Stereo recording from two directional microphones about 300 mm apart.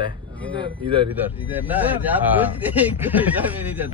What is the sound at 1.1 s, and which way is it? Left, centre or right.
Speech, centre.